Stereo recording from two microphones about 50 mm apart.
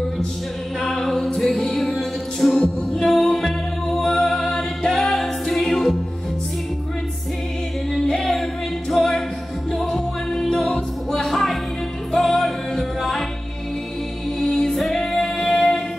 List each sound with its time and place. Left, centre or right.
0.7 s music: centre
4.0 s a capella: centre
7.9 s singing: centre
8.9 s music: centre
14.4 s music: centre